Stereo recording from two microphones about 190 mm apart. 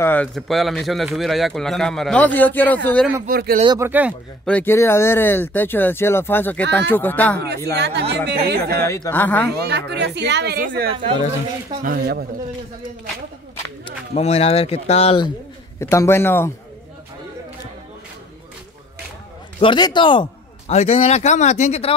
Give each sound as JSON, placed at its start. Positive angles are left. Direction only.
{"t": 0.0, "sound": "speech", "side_deg": 10}
{"t": 3.3, "sound": "speech", "side_deg": -50}
{"t": 3.6, "sound": "speech", "side_deg": -20}
{"t": 4.5, "sound": "speech", "side_deg": 10}
{"t": 7.3, "sound": "a woman's voice", "side_deg": -60}
{"t": 8.8, "sound": "speech", "side_deg": 15}
{"t": 9.5, "sound": "a woman's voice", "side_deg": -60}
{"t": 13.8, "sound": "a man's voice", "side_deg": 35}
{"t": 15.8, "sound": "speech", "side_deg": 15}
{"t": 19.6, "sound": "a man's voice", "side_deg": 25}